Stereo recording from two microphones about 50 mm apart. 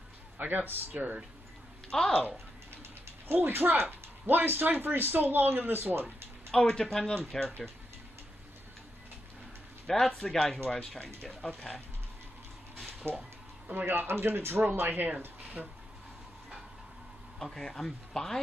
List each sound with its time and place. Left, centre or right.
0.4 s speech: right
1.9 s speech: centre
2.2 s a sound: right
3.3 s speech: right
6.5 s speech: centre
9.8 s speech: centre
13.0 s speech: right
17.4 s speech: centre